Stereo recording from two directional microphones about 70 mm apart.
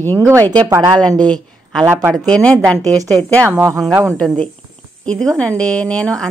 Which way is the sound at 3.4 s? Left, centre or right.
Right.